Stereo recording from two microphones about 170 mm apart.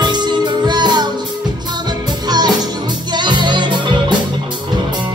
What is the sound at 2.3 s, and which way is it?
Music, 25° right (ahead or behind).